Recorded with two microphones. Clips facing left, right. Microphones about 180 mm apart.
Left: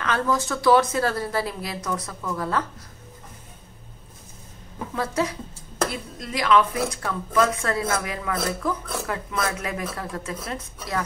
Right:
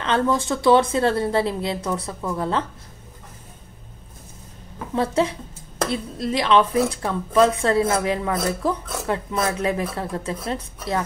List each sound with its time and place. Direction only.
0.0 s speech: 25° right (ahead or behind)
4.9 s speech: 25° right (ahead or behind)